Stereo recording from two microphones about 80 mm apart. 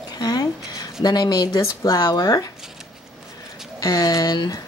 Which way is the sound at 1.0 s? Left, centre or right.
Left.